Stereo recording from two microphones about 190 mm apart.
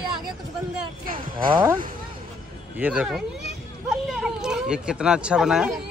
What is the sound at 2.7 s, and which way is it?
Speech, 5° right (ahead or behind).